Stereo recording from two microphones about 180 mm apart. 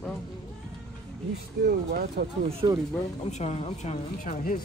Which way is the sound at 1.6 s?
60° right (ahead or behind).